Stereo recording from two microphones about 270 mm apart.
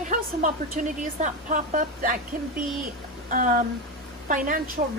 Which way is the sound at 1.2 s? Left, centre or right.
Right.